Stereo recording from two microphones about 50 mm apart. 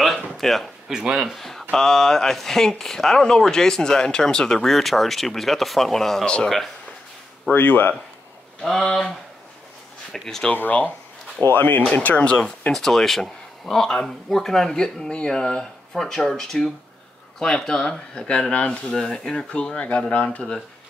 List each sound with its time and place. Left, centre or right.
0.0 s a sound: centre
0.8 s speech: centre
1.4 s speech: centre
7.5 s speech: left
10.2 s speech: centre
10.5 s speech: left
11.9 s speech: left
12.3 s speech: centre
12.7 s speech: centre; by 20.5 s left